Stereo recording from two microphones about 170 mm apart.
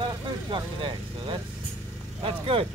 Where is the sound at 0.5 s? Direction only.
30° right (ahead or behind).